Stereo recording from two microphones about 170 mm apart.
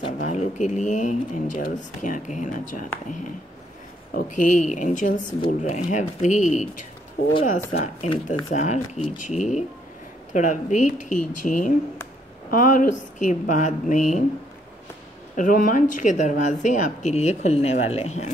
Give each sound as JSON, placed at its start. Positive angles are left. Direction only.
{"t": 0.2, "sound": "speech", "side_deg": 45}
{"t": 4.1, "sound": "speech", "side_deg": 50}
{"t": 7.7, "sound": "speech", "side_deg": 40}
{"t": 15.3, "sound": "speech", "side_deg": 50}